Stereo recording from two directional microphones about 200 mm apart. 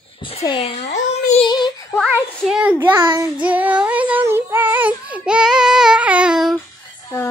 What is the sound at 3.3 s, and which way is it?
Child singing, 5° right (ahead or behind).